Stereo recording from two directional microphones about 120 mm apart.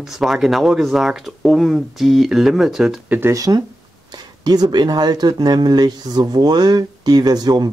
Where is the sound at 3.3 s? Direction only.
30° right (ahead or behind).